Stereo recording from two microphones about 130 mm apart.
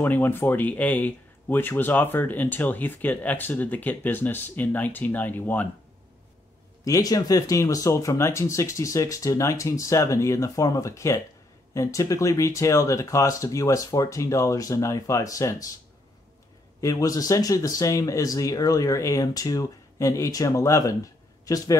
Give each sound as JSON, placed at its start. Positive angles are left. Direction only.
{"t": 0.0, "sound": "speech", "side_deg": 15}
{"t": 6.8, "sound": "speech", "side_deg": 25}
{"t": 16.8, "sound": "speech", "side_deg": 25}